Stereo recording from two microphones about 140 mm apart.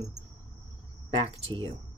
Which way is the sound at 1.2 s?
40° right (ahead or behind).